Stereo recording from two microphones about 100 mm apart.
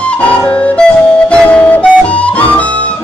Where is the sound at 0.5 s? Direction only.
15° left (ahead or behind).